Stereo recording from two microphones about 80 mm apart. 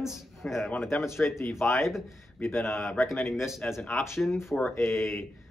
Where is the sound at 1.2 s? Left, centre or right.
Left.